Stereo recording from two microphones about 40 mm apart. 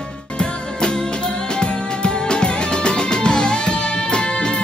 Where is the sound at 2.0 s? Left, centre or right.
Left.